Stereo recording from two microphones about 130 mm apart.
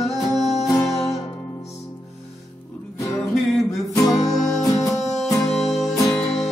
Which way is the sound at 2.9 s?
25° left (ahead or behind).